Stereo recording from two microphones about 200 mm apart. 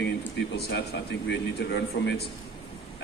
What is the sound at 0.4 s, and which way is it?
A man's voice, 55° left (ahead or behind).